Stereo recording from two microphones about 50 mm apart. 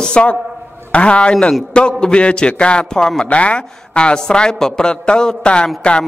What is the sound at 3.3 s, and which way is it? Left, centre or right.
A woman's voice, left.